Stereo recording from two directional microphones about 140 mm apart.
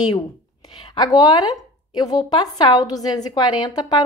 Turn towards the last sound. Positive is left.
turn(degrees=30)  # may be behind; listen again after turning